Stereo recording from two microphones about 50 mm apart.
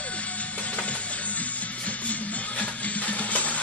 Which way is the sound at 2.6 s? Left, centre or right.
Left.